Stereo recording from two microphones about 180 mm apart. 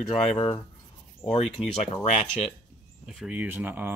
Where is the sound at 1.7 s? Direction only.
35° left (ahead or behind).